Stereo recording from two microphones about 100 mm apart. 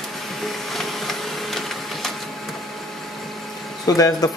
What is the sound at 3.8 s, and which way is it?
Speech, 40° left (ahead or behind).